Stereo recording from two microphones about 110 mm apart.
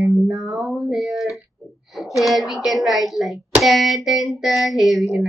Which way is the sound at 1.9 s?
Centre (ahead or behind).